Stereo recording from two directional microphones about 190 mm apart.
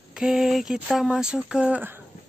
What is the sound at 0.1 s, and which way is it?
Speech, centre (ahead or behind).